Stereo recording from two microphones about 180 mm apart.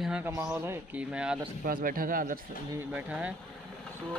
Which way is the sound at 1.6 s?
50° right (ahead or behind).